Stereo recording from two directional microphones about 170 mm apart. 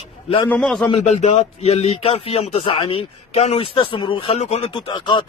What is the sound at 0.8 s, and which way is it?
A man's voice, 40° left (ahead or behind).